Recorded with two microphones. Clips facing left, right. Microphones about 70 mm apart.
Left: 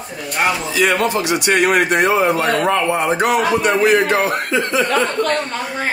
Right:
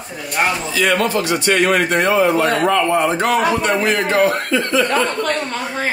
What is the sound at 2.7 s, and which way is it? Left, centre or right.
A man's voice, centre.